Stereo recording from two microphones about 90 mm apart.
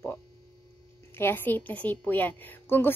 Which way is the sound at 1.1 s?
25° left (ahead or behind).